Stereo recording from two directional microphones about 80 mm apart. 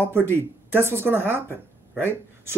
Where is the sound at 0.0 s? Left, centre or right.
Right.